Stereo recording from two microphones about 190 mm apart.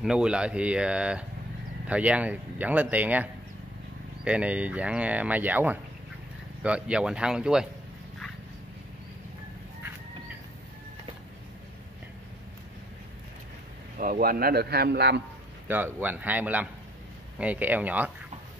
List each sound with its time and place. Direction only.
0.0 s speech: 5° right (ahead or behind)
13.9 s a man's voice: 50° right (ahead or behind)
15.7 s speech: 10° right (ahead or behind)